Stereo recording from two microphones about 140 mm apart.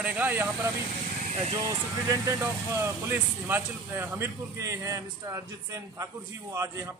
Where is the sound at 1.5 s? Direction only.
25° right (ahead or behind).